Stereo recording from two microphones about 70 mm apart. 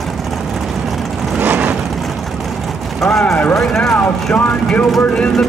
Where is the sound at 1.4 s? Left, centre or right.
Right.